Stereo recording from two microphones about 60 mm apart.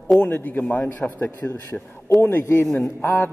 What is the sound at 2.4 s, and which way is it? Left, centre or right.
Speech, left.